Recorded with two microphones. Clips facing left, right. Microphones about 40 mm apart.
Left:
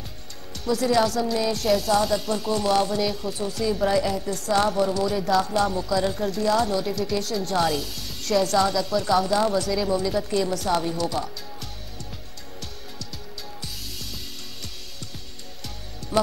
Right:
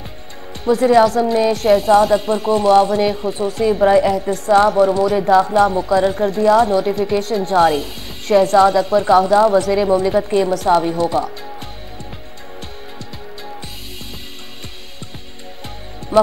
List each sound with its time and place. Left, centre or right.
0.7 s speech: right
16.1 s speech: right